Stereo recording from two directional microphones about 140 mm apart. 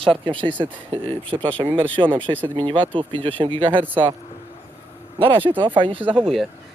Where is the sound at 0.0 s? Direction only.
40° right (ahead or behind).